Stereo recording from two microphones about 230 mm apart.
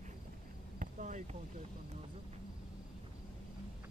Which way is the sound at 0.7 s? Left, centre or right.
Right.